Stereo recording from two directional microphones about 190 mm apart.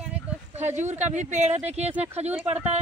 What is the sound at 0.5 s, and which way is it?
Speech, 40° right (ahead or behind).